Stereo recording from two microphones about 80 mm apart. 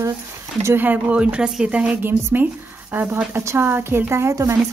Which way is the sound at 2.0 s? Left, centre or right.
Right.